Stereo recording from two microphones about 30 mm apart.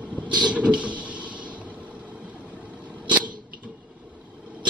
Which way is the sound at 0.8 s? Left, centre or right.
Right.